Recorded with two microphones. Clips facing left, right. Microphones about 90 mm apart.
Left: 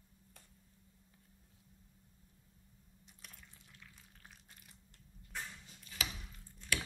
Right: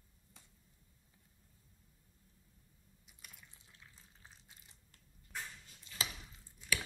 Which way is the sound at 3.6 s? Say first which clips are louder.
Left 2 dB; 25° right (ahead or behind).